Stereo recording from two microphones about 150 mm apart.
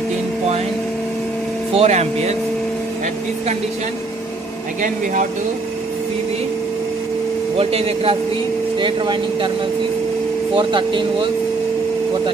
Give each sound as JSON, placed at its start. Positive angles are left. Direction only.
{"t": 1.8, "sound": "speech", "side_deg": -45}
{"t": 7.5, "sound": "speech", "side_deg": -40}
{"t": 10.5, "sound": "speech", "side_deg": -35}